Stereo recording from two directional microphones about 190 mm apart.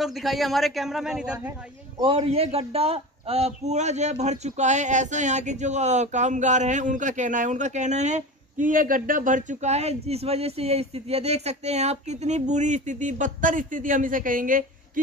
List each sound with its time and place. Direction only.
0.0 s a man's voice: centre (ahead or behind)
2.0 s a man's voice: 30° right (ahead or behind); by 14.6 s 45° right (ahead or behind)